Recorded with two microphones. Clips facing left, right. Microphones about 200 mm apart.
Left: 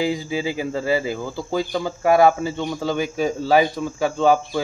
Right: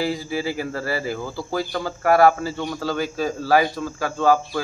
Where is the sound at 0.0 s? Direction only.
20° left (ahead or behind).